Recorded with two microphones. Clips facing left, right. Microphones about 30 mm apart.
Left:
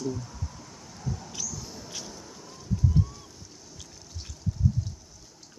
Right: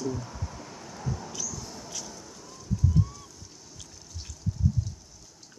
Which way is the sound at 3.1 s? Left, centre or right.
Centre.